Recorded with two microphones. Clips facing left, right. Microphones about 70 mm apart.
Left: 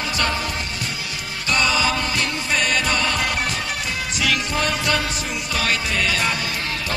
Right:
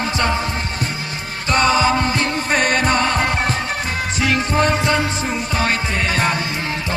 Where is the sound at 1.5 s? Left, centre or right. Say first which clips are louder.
Right 5 dB; right.